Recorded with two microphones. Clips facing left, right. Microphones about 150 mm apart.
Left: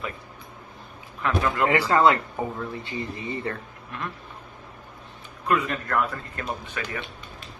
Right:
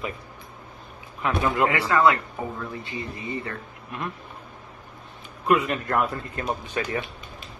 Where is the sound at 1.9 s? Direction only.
30° left (ahead or behind).